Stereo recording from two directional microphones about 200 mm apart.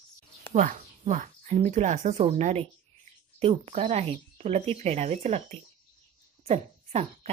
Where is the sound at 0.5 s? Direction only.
40° right (ahead or behind).